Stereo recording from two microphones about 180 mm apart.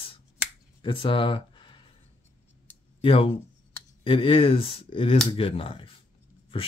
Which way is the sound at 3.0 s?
30° left (ahead or behind).